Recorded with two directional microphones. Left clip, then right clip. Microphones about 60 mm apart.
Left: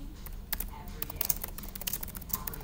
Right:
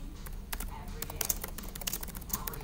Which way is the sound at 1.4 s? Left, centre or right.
Centre.